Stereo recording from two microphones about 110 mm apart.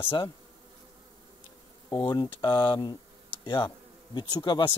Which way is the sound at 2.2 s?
50° left (ahead or behind).